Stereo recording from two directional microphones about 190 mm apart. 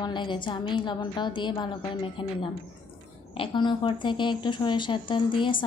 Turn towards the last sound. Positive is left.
turn(degrees=25)  # may be behind; listen again after turning